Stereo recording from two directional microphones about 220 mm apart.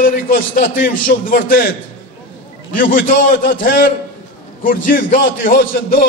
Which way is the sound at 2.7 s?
40° left (ahead or behind).